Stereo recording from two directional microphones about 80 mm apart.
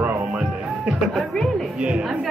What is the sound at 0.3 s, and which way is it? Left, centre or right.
Music, centre.